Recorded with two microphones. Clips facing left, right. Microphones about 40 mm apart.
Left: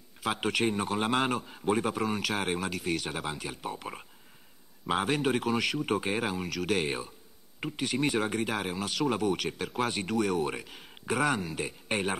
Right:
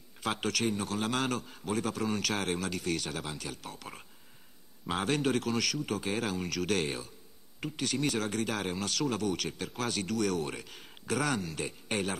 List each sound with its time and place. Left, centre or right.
0.4 s speech: left